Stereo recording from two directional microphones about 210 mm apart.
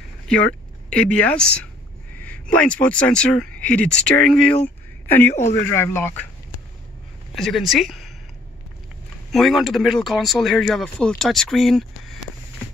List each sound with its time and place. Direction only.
0.8 s speech: 5° left (ahead or behind)
4.6 s a sound: 10° left (ahead or behind)
5.7 s speech: 10° left (ahead or behind)
7.3 s speech: centre (ahead or behind)
9.3 s speech: centre (ahead or behind)